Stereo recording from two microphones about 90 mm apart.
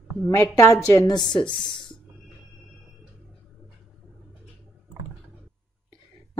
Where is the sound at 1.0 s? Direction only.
55° left (ahead or behind).